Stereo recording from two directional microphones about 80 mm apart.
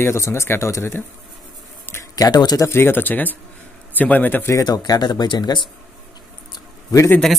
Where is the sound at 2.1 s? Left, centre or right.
Left.